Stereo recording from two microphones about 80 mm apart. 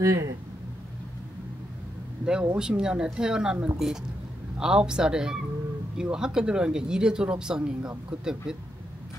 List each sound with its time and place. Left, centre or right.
0.0 s speech: right
2.5 s speech: centre